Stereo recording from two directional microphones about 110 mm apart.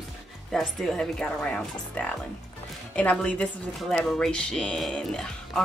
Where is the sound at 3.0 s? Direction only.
10° left (ahead or behind).